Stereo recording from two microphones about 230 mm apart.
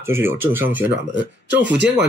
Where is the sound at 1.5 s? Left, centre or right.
Right.